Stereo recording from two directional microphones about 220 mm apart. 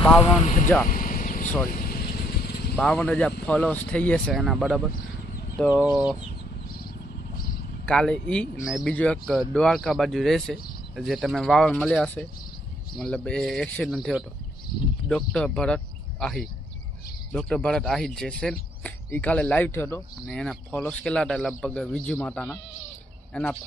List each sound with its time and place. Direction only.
0.0 s speech: centre (ahead or behind)
0.4 s speech: 30° left (ahead or behind)
0.8 s a sound: 40° left (ahead or behind)
1.7 s vehicle: 40° left (ahead or behind)
2.7 s speech: 5° left (ahead or behind)
7.8 s speech: 5° left (ahead or behind)